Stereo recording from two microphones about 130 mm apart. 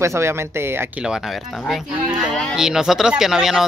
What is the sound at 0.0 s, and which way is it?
Speech, 20° right (ahead or behind).